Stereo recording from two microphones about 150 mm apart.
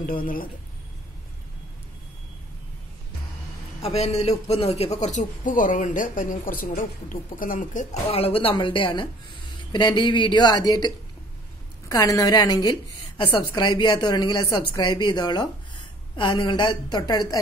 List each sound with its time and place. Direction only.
0.0 s speech: 70° left (ahead or behind)
3.8 s a man's voice: 45° left (ahead or behind); by 8.0 s 60° left (ahead or behind)
8.1 s a woman's voice: 40° left (ahead or behind)
11.9 s a woman's voice: 20° left (ahead or behind)